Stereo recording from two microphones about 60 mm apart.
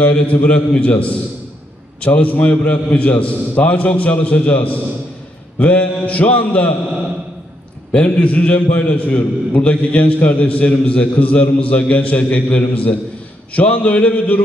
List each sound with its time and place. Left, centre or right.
0.0 s a man's voice: left
7.9 s a man's voice: left